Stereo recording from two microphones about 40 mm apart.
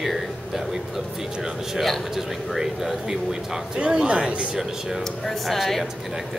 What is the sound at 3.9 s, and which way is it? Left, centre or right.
Speech, right.